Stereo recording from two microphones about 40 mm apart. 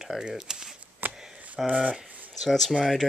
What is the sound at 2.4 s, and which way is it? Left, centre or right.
Speech, centre.